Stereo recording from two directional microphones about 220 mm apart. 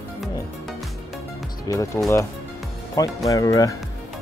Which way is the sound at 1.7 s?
15° left (ahead or behind).